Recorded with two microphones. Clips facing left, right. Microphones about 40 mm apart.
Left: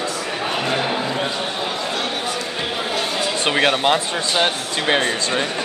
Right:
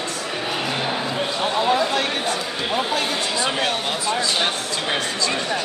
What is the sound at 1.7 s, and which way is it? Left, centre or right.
Chatter, right.